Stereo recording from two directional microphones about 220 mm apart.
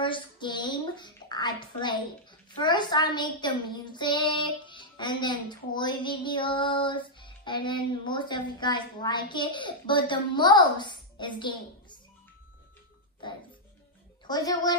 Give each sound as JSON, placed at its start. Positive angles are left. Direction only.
{"t": 0.0, "sound": "a sound", "side_deg": 20}
{"t": 2.5, "sound": "child singing", "side_deg": 20}
{"t": 14.2, "sound": "a woman's voice", "side_deg": 15}